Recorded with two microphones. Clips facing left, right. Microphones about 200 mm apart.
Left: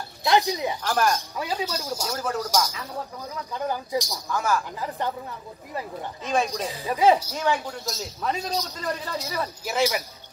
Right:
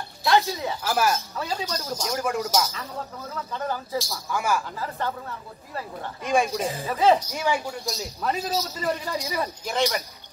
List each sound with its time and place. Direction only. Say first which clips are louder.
0.2 s speech: even; 15° left (ahead or behind)
0.8 s speech: even; 5° right (ahead or behind)
1.3 s speech: left 1 dB; 10° left (ahead or behind)
2.1 s speech: right 1 dB; 10° right (ahead or behind)
3.3 s speech: left 1 dB; 15° left (ahead or behind)
4.3 s speech: even; 10° right (ahead or behind)
4.7 s speech: left 1 dB; 15° left (ahead or behind)
6.2 s speech: right 2 dB; 10° right (ahead or behind)
6.9 s speech: left 1 dB; 10° left (ahead or behind)
7.3 s a man's voice: even; 10° right (ahead or behind)
9.7 s speech: left 2 dB; 5° left (ahead or behind)